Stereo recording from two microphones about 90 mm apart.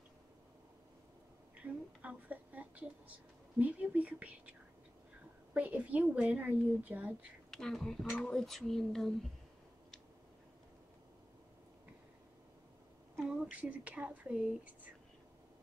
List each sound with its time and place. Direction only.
1.6 s a woman's voice: 15° right (ahead or behind)
7.5 s speech: 5° left (ahead or behind)
13.3 s speech: 15° right (ahead or behind)